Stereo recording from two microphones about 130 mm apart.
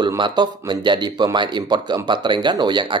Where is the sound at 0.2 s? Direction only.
35° right (ahead or behind).